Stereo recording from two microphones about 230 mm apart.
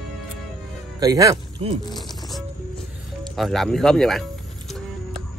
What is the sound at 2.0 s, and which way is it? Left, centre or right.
Music, centre.